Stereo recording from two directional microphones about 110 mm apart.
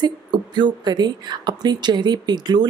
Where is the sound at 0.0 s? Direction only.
40° right (ahead or behind).